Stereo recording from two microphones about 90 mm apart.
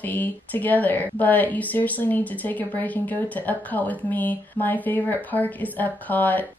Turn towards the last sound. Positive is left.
turn(degrees=20)  # may be behind; listen again after turning